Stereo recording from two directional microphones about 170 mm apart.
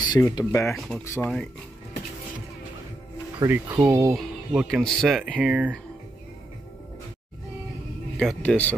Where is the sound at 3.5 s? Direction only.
15° right (ahead or behind).